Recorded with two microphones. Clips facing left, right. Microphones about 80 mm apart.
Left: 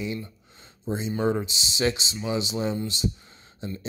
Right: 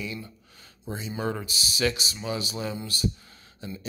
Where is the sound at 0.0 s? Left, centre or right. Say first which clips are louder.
Left 4 dB; left.